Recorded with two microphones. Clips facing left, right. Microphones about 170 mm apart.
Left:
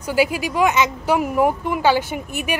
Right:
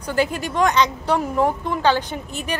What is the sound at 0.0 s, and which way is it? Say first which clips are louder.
A woman's voice: left 2 dB; 5° left (ahead or behind).